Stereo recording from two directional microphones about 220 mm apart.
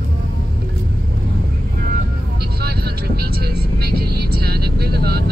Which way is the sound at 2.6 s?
45° right (ahead or behind).